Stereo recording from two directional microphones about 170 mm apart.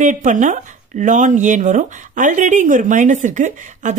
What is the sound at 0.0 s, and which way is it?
Speech, 50° right (ahead or behind).